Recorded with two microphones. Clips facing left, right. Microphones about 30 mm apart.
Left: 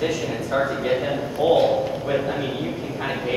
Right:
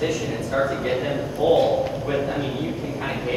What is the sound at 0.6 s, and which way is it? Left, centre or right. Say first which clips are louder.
A man's voice: left 1 dB; centre.